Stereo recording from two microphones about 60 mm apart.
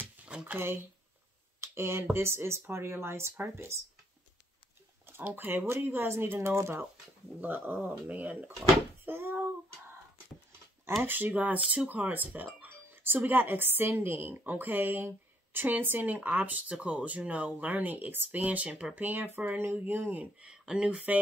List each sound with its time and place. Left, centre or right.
0.2 s a sound: centre
0.6 s speech: right
1.6 s a sound: right
2.1 s speech: right
5.0 s speech: right
7.3 s speech: right
9.0 s child singing: right
11.0 s speech: right; by 21.0 s centre